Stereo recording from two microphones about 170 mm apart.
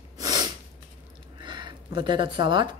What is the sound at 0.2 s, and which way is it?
Snort, 20° right (ahead or behind).